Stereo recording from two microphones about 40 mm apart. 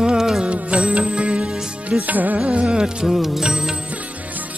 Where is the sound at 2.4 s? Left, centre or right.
Right.